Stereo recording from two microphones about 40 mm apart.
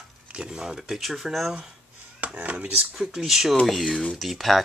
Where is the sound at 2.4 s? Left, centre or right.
Right.